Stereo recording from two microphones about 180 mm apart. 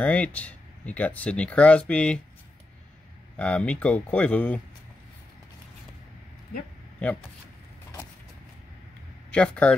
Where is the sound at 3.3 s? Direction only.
5° left (ahead or behind).